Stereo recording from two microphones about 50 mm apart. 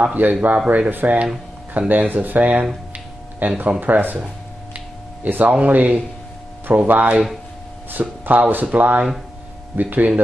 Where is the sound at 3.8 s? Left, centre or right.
Right.